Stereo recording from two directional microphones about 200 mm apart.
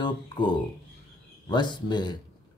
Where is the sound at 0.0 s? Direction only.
25° left (ahead or behind).